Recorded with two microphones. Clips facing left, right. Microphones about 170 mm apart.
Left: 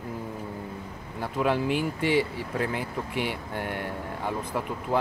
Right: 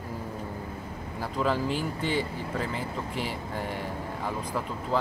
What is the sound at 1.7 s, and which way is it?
Speech, 65° left (ahead or behind).